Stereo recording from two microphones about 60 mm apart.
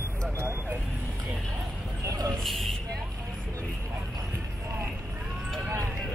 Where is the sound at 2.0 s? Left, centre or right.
Right.